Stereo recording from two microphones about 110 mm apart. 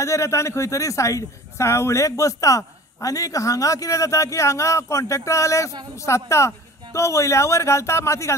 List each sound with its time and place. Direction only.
0.0 s speech: 25° left (ahead or behind)